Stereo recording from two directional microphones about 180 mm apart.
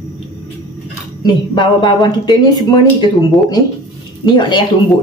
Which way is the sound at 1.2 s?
25° left (ahead or behind).